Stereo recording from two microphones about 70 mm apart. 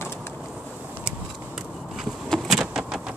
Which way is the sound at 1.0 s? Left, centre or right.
Centre.